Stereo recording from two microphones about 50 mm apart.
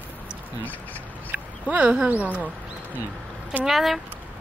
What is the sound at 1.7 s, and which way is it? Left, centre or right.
Speech, right.